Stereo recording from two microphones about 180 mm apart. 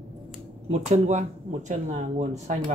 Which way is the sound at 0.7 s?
40° right (ahead or behind).